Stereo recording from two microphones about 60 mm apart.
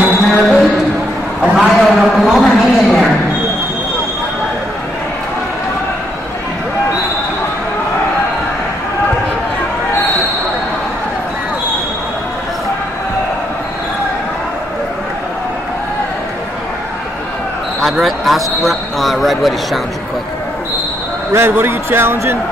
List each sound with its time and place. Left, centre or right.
0.3 s music: centre
1.4 s a sound: centre
18.0 s a man's voice: centre
21.3 s speech: right